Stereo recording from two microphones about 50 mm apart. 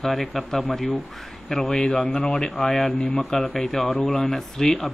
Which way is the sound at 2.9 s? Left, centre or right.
Left.